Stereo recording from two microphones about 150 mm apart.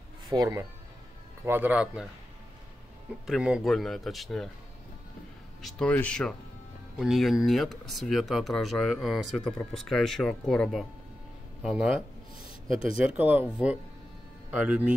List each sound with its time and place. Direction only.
0.3 s speech: 25° right (ahead or behind)
1.4 s speech: 15° right (ahead or behind)
3.3 s speech: 5° right (ahead or behind)
5.6 s speech: 5° left (ahead or behind)
12.6 s speech: 40° left (ahead or behind)
13.0 s speech: 15° right (ahead or behind)